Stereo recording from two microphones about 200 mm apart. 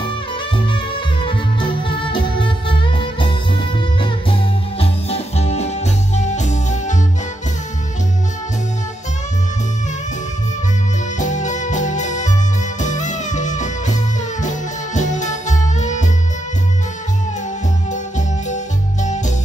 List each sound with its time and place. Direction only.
1.2 s music: 25° left (ahead or behind)
11.1 s music: 35° left (ahead or behind)
15.0 s music: 35° left (ahead or behind)